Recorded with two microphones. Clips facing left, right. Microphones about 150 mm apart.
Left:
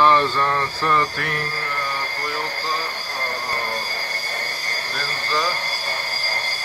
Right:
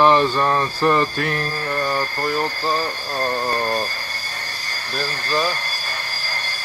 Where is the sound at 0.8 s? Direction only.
25° right (ahead or behind).